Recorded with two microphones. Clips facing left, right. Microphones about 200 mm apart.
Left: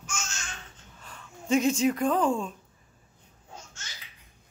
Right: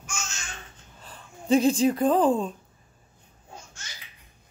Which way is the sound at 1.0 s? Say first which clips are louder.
Right 2 dB; 35° right (ahead or behind).